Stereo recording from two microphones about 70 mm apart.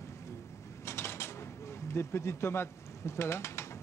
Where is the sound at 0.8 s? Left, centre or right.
Left.